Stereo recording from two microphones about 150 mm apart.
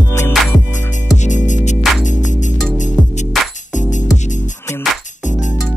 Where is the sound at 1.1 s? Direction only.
55° left (ahead or behind).